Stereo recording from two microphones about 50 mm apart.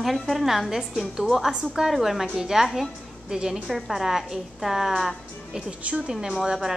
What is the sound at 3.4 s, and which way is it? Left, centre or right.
Speech, centre.